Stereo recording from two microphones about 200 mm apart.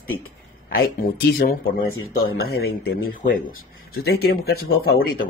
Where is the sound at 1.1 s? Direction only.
50° left (ahead or behind).